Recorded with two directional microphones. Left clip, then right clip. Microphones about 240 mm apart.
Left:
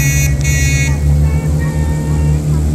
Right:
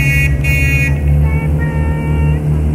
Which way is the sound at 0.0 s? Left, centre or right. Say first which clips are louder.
Right 3 dB; centre.